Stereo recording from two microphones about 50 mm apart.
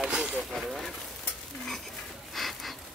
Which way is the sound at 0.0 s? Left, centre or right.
Right.